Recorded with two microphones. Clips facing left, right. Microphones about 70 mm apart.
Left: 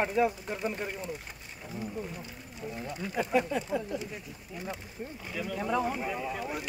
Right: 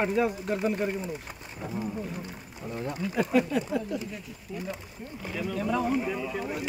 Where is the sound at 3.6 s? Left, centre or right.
Centre.